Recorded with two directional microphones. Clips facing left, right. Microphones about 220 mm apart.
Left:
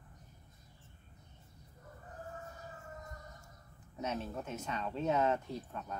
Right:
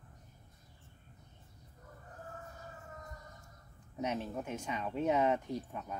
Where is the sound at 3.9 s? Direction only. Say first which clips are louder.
Right 2 dB; 15° right (ahead or behind).